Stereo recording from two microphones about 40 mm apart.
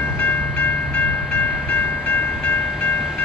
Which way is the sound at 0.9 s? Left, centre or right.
Left.